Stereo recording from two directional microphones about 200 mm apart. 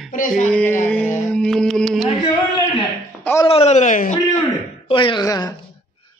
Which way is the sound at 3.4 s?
30° left (ahead or behind).